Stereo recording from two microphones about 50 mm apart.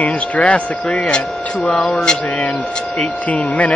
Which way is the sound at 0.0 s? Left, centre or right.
Left.